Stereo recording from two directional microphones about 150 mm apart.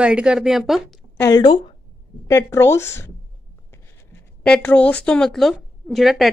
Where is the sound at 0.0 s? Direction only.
5° right (ahead or behind).